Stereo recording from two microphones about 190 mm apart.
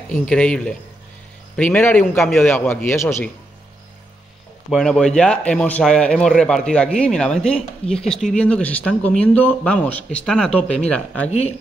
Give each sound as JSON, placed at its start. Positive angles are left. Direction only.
{"t": 0.1, "sound": "speech", "side_deg": 5}
{"t": 4.6, "sound": "speech", "side_deg": 0}
{"t": 11.2, "sound": "speech", "side_deg": 35}